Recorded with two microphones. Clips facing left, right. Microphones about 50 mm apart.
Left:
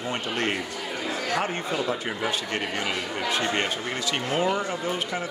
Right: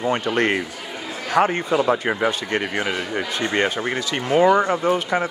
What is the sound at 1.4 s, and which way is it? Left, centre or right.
Speech, right.